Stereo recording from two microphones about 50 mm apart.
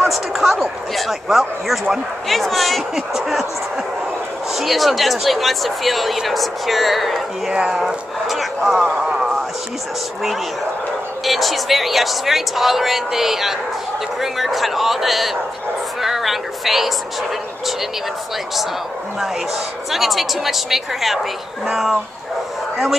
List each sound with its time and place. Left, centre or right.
0.1 s speech: centre
4.6 s speech: centre
7.5 s speech: centre
7.8 s speech: centre
11.2 s speech: centre
19.9 s speech: centre